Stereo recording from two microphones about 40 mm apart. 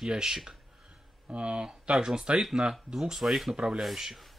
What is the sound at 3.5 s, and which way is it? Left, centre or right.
Speech, right.